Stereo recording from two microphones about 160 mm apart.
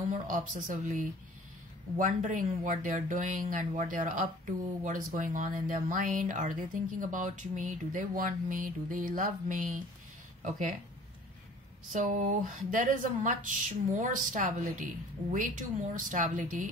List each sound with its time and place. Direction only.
0.1 s speech: 55° right (ahead or behind)
11.9 s speech: 50° right (ahead or behind)